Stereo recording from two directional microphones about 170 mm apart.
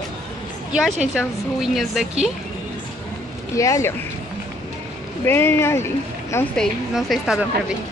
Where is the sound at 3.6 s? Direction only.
15° left (ahead or behind).